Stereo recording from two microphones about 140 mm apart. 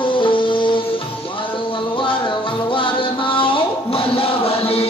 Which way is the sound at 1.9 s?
35° left (ahead or behind).